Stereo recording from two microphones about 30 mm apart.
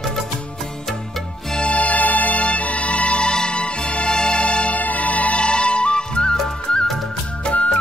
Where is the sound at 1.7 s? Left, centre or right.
Left.